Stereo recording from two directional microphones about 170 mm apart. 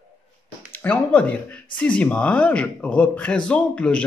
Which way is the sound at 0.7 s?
10° left (ahead or behind).